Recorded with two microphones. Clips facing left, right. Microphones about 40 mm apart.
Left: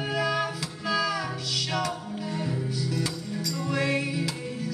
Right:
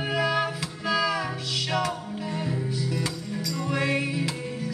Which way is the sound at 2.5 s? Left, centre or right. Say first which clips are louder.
Right 1 dB; centre.